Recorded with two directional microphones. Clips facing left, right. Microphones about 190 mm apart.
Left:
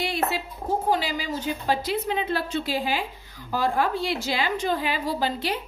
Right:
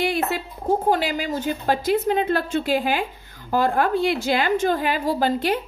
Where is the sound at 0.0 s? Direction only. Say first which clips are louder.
Right 4 dB; 55° right (ahead or behind).